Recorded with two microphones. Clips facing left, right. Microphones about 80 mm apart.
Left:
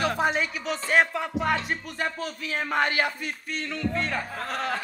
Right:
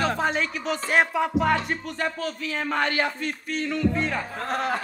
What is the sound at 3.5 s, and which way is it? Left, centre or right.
Music, centre.